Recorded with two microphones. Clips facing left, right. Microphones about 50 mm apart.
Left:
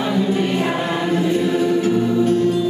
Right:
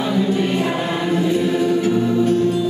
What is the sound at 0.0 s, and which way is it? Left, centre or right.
Choir, centre.